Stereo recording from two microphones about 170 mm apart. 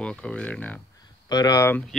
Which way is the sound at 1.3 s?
20° left (ahead or behind).